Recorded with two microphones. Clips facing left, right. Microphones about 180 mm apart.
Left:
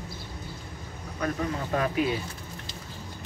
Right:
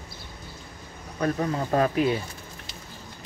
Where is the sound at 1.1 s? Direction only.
35° right (ahead or behind).